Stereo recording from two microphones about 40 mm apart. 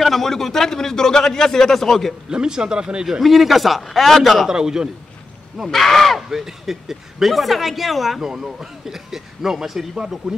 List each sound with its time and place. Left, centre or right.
0.0 s speech: centre
2.2 s speech: centre
3.2 s speech: centre
4.5 s a man's voice: centre
5.7 s speech: centre
6.2 s speech: centre
8.2 s a man's voice: centre